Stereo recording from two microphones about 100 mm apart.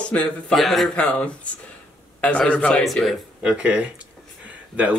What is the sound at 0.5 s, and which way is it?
Speech, centre (ahead or behind).